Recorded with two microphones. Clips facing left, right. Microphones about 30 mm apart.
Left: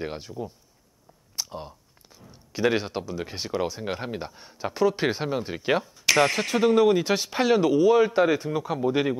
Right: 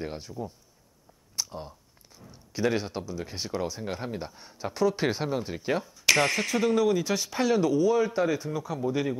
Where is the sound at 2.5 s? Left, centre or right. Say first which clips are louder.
Left 3 dB; centre.